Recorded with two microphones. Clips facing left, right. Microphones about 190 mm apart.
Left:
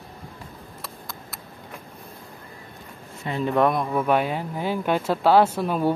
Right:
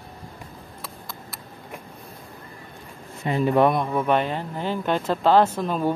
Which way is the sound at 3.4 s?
5° right (ahead or behind).